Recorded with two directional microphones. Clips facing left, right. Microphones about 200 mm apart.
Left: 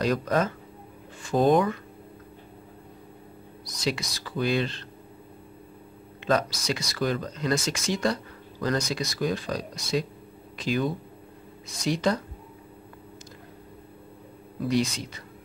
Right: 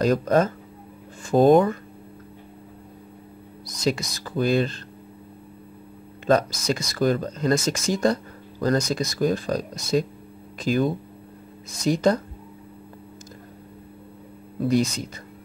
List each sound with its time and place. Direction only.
0.0 s speech: 45° right (ahead or behind)
3.6 s speech: 45° right (ahead or behind)
6.2 s speech: 45° right (ahead or behind)
14.7 s speech: 45° right (ahead or behind)